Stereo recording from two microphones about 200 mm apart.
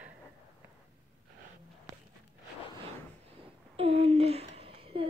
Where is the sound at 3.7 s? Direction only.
30° right (ahead or behind).